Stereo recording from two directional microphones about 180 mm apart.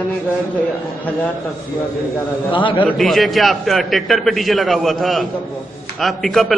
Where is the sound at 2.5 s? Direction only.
30° left (ahead or behind).